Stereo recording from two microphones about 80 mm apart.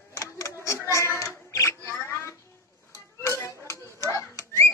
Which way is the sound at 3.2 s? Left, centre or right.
Left.